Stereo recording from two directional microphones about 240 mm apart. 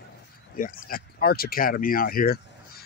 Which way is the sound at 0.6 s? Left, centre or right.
Left.